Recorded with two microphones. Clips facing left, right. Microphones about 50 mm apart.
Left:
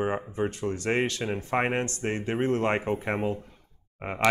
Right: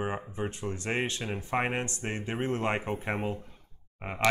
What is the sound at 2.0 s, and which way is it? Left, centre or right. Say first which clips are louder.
Speech: left 5 dB; centre.